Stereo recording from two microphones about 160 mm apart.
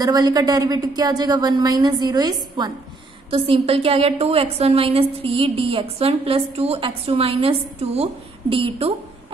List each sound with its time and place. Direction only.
0.0 s a woman's voice: 25° right (ahead or behind)